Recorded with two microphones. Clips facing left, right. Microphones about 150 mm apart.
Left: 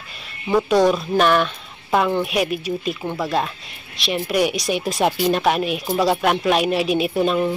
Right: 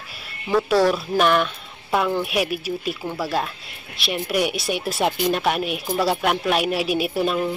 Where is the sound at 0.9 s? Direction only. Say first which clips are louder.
Left 2 dB; 5° right (ahead or behind).